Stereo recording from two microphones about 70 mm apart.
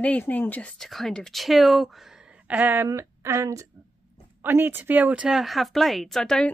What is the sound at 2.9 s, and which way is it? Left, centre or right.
Speech, right.